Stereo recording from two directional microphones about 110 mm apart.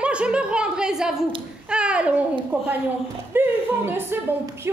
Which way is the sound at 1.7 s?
10° right (ahead or behind).